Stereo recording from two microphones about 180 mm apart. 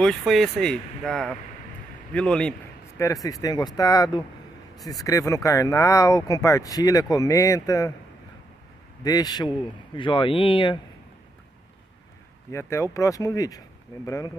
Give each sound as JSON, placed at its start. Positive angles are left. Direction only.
{"t": 0.0, "sound": "speech", "side_deg": 0}
{"t": 3.0, "sound": "speech", "side_deg": 20}
{"t": 9.0, "sound": "speech", "side_deg": 20}
{"t": 12.4, "sound": "speech", "side_deg": 15}